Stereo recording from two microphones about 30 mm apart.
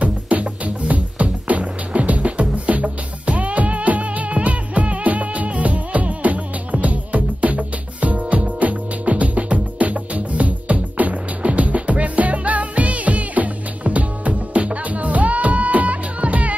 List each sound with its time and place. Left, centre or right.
0.0 s music: right